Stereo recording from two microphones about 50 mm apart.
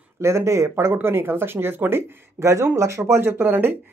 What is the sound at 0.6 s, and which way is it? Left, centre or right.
Speech, right.